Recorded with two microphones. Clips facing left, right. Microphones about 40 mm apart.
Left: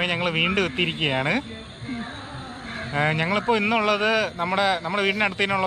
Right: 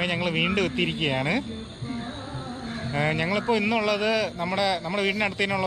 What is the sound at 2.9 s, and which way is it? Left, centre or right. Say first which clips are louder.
A man's voice: left 3 dB; left.